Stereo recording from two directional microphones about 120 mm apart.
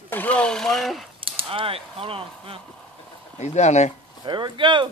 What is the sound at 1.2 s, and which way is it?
Speech, 50° right (ahead or behind).